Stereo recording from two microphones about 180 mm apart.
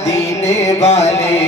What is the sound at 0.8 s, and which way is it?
Music, 40° left (ahead or behind).